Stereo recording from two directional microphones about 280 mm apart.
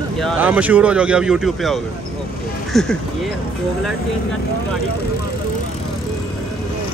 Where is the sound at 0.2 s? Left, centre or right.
Centre.